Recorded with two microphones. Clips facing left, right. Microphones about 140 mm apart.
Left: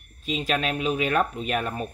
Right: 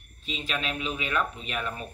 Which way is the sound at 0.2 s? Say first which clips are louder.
Left 7 dB; 45° left (ahead or behind).